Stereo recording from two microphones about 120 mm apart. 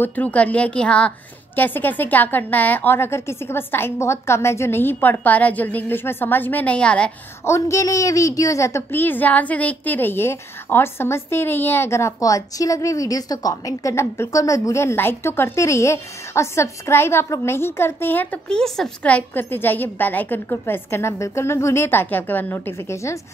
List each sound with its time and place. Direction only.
0.0 s a woman's voice: 15° left (ahead or behind)
7.4 s a woman's voice: 25° left (ahead or behind)